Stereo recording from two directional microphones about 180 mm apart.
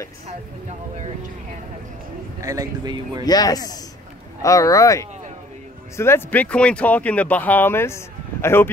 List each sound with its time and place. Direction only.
2.4 s speech: 20° right (ahead or behind)
3.3 s speech: 20° left (ahead or behind)